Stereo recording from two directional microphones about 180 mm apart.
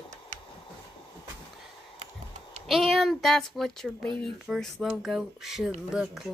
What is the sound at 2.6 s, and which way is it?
Speech, centre (ahead or behind).